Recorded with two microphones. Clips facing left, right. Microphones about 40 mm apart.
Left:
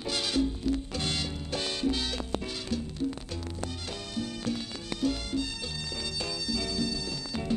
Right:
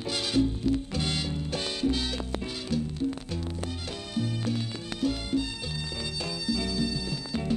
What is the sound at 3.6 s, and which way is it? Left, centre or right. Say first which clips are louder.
Music: right 2 dB; centre.